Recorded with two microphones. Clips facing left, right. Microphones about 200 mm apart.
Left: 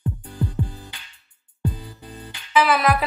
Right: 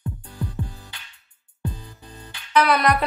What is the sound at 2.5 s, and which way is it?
Music, centre (ahead or behind).